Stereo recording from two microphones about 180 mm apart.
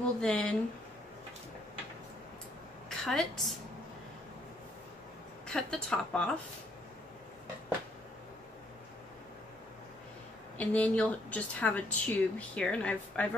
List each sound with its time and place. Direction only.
0.2 s speech: 5° left (ahead or behind)
2.9 s a woman's voice: centre (ahead or behind)
5.5 s speech: 5° left (ahead or behind)
10.6 s speech: 10° left (ahead or behind)